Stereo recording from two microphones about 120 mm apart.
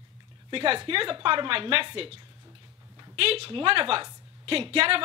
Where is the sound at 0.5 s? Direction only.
50° right (ahead or behind).